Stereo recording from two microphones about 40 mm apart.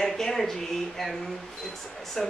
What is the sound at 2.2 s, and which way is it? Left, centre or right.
Speech, centre.